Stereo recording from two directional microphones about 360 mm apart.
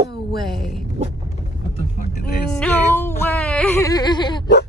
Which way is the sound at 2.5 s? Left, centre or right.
Centre.